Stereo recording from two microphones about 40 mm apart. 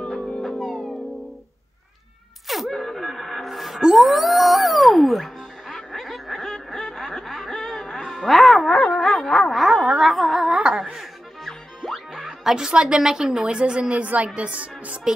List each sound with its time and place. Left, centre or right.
0.1 s music: centre
2.4 s music: centre
3.4 s music: centre
6.8 s snicker: centre
7.5 s music: centre
8.7 s a sound: left
9.7 s a sound: right
10.0 s a sound: centre
10.4 s a sound: centre
11.9 s music: centre
12.5 s a woman's voice: centre
14.0 s a woman's voice: right